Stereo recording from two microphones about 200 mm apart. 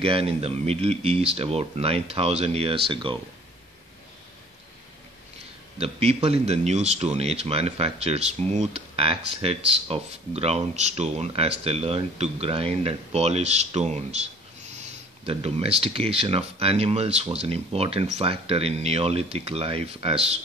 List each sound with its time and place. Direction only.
0.0 s speech: 30° right (ahead or behind)
5.8 s speech: 30° right (ahead or behind)